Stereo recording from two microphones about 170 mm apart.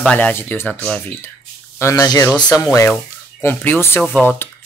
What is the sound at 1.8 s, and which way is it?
Speech, 20° left (ahead or behind).